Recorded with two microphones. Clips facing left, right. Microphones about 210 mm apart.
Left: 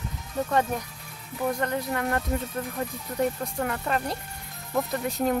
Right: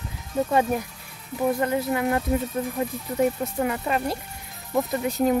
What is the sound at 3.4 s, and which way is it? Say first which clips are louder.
Speech: right 4 dB; 10° right (ahead or behind).